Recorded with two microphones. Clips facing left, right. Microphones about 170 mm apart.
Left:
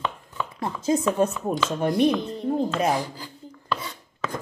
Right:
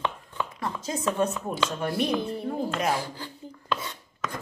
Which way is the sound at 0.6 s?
25° left (ahead or behind).